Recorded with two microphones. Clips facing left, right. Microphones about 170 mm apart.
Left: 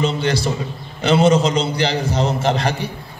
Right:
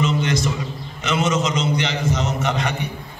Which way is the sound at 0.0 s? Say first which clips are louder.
Left 1 dB; 35° left (ahead or behind).